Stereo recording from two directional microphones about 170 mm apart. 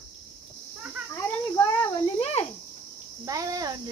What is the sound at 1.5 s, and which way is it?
Speech, 25° left (ahead or behind).